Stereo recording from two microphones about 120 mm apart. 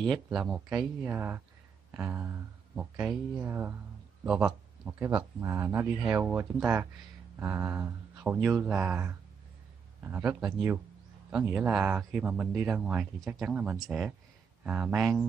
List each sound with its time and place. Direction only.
0.0 s speech: centre (ahead or behind)
1.0 s speech: 20° right (ahead or behind)
8.2 s speech: 10° right (ahead or behind)
10.1 s speech: 20° right (ahead or behind)